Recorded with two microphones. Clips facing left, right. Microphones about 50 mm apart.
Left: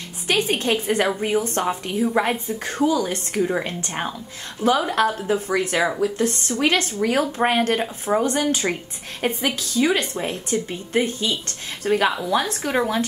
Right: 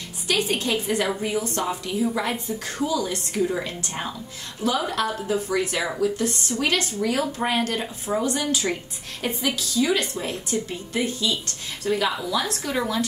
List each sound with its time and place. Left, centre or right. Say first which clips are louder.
0.3 s a woman's voice: left 3 dB; left